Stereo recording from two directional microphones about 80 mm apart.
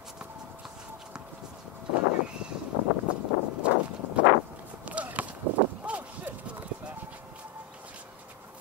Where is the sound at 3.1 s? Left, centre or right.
Centre.